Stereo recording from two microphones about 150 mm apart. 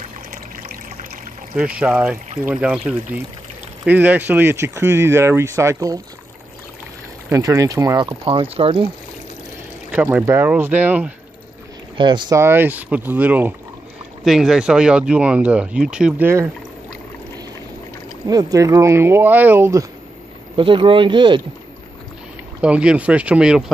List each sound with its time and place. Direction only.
1.8 s speech: 10° right (ahead or behind)
7.2 s speech: 20° right (ahead or behind)
8.1 s speech: 40° right (ahead or behind)
9.8 s speech: 10° right (ahead or behind)
12.0 s speech: 30° right (ahead or behind)
12.4 s speech: 15° right (ahead or behind)
18.2 s speech: 25° right (ahead or behind)
20.5 s speech: 35° right (ahead or behind)
22.6 s speech: 10° right (ahead or behind)